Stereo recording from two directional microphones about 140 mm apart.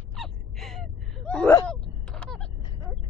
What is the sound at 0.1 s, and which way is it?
Gasp, centre (ahead or behind).